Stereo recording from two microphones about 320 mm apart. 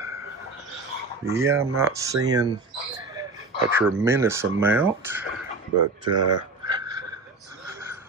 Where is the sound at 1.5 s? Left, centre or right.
Centre.